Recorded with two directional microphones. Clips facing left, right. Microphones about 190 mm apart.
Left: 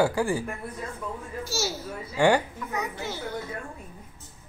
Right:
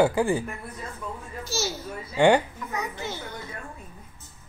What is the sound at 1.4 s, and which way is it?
Speech, 10° left (ahead or behind).